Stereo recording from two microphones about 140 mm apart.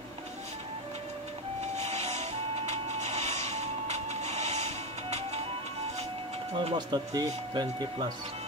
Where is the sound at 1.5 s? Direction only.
50° right (ahead or behind).